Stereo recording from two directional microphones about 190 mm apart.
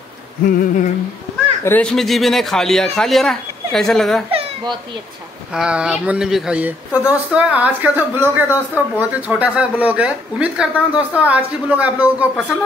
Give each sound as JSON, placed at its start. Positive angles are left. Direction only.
{"t": 0.5, "sound": "humming", "side_deg": 45}
{"t": 1.6, "sound": "speech", "side_deg": 10}
{"t": 4.3, "sound": "baby cry", "side_deg": -30}
{"t": 5.5, "sound": "speech", "side_deg": -5}